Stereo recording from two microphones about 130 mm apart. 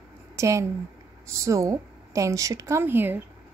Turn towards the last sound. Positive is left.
turn(degrees=-15)  # may be behind; listen again after turning